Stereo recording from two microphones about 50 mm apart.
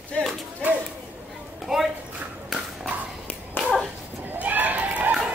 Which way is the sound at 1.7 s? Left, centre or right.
Centre.